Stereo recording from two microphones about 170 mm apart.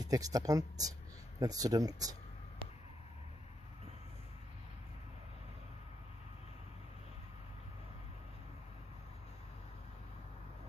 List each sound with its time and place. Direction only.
0.0 s speech: 20° right (ahead or behind)